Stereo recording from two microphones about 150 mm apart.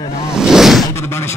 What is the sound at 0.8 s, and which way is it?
Speech, 15° left (ahead or behind).